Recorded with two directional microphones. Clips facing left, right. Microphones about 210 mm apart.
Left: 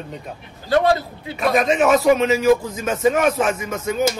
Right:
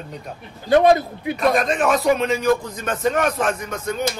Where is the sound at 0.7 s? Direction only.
20° right (ahead or behind).